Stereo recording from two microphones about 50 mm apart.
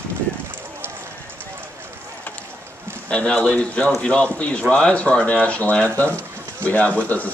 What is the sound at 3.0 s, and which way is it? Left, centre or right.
Speech, left.